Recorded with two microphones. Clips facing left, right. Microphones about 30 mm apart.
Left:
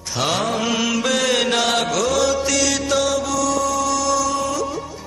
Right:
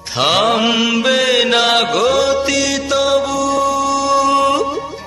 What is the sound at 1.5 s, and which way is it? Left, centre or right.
Music, right.